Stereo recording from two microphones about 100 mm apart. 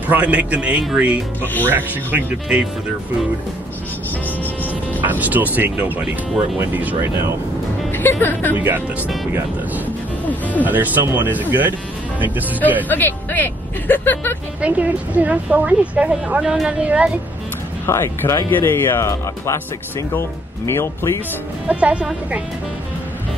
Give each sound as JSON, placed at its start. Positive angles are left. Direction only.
{"t": 0.1, "sound": "a woman's voice", "side_deg": -15}
{"t": 1.4, "sound": "speech", "side_deg": 20}
{"t": 1.7, "sound": "speech", "side_deg": -20}
{"t": 5.0, "sound": "a woman's voice", "side_deg": -15}
{"t": 7.9, "sound": "speech", "side_deg": 20}
{"t": 8.5, "sound": "speech", "side_deg": -20}
{"t": 10.2, "sound": "speech", "side_deg": 15}
{"t": 10.6, "sound": "a woman's voice", "side_deg": -15}
{"t": 12.8, "sound": "speech", "side_deg": 20}
{"t": 14.6, "sound": "a woman's voice", "side_deg": -15}
{"t": 17.8, "sound": "speech", "side_deg": 25}
{"t": 21.6, "sound": "a woman's voice", "side_deg": -15}